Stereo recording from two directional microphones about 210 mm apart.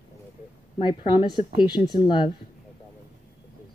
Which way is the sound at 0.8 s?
20° left (ahead or behind).